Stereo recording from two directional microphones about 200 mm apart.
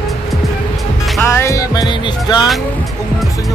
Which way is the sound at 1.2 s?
15° left (ahead or behind).